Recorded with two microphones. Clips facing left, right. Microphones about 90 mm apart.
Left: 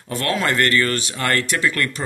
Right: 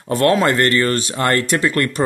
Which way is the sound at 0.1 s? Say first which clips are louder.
Right 7 dB; 40° right (ahead or behind).